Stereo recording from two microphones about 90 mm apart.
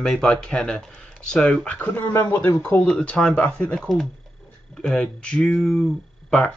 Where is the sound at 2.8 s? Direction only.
10° left (ahead or behind).